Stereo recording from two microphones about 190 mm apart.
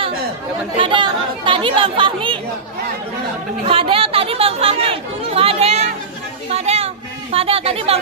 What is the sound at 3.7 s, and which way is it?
Speech, 30° right (ahead or behind).